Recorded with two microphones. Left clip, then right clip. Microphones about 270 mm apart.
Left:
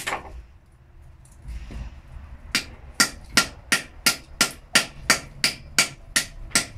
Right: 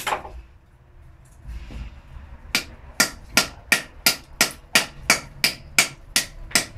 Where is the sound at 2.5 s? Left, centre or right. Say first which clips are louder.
Right 1 dB; centre.